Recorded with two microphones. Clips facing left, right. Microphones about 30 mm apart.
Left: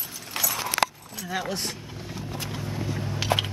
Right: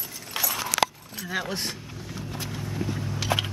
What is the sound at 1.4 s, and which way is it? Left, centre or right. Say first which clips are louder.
Speech: left 1 dB; centre.